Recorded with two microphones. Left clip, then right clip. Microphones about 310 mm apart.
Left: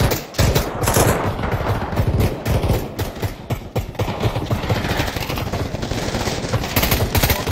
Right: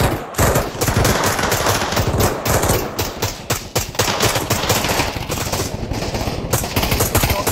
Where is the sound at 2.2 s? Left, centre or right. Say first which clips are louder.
Right 7 dB; right.